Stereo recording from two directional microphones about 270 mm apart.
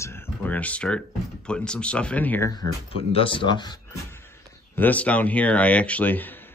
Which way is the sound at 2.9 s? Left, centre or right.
Centre.